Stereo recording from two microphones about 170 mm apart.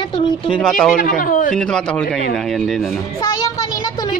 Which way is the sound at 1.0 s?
55° left (ahead or behind).